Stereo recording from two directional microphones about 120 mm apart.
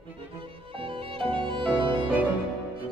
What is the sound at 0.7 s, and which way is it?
Violin, 45° right (ahead or behind).